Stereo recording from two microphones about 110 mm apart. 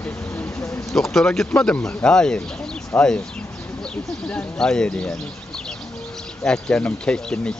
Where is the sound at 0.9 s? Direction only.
Centre (ahead or behind).